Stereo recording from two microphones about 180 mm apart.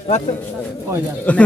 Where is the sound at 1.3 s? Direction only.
5° left (ahead or behind).